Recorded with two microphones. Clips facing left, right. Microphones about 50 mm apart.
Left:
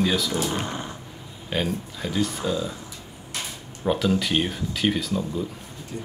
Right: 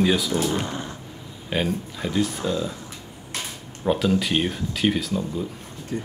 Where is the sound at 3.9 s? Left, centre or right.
Centre.